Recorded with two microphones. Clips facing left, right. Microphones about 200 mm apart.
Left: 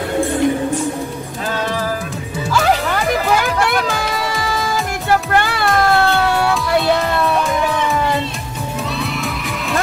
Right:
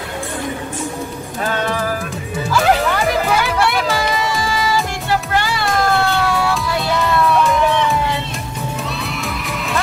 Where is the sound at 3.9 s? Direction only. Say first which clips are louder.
Right 2 dB; 55° left (ahead or behind).